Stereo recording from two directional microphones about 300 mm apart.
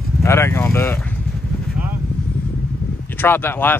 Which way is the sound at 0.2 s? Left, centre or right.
Centre.